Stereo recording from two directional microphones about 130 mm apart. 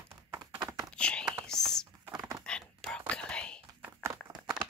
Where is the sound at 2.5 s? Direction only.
5° left (ahead or behind).